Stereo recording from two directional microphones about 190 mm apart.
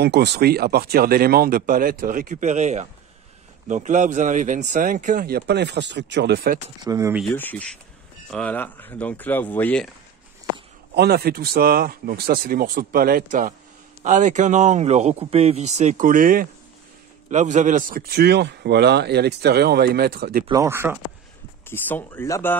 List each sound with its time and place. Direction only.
0.0 s speech: 60° right (ahead or behind)
6.8 s speech: 15° right (ahead or behind)
7.3 s speech: 10° left (ahead or behind)
11.0 s a man's voice: 55° right (ahead or behind)
20.4 s speech: 15° right (ahead or behind)
21.6 s speech: 10° left (ahead or behind)